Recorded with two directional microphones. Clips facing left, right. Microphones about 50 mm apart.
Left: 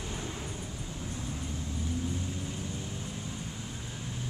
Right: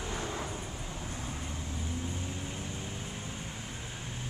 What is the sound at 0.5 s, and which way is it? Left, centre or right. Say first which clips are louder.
Vehicle: even; right.